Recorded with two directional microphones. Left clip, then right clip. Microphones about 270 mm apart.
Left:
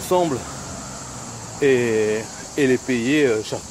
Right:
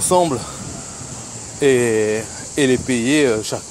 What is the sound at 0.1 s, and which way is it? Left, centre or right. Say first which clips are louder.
Speech: right 3 dB; right.